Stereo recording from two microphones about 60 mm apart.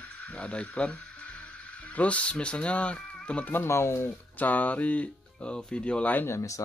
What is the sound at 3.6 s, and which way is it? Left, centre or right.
Speech, left.